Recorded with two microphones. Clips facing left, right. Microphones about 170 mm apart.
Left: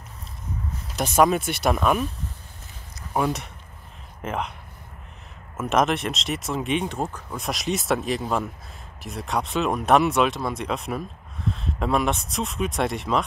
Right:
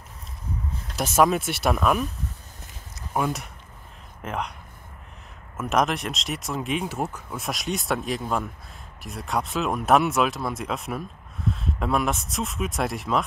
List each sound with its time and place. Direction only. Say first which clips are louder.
0.8 s speech: left 1 dB; centre (ahead or behind)
3.1 s speech: left 2 dB; centre (ahead or behind)
5.6 s speech: left 2 dB; centre (ahead or behind)